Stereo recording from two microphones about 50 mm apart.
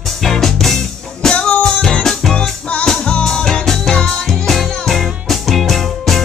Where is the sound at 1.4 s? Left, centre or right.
Left.